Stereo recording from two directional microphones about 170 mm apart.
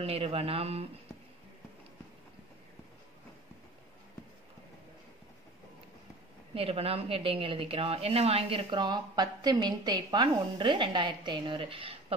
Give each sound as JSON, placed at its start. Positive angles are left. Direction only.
{"t": 0.0, "sound": "a woman's voice", "side_deg": -35}
{"t": 6.5, "sound": "a woman's voice", "side_deg": -35}